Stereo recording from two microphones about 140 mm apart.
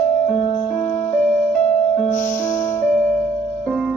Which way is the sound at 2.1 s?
60° left (ahead or behind).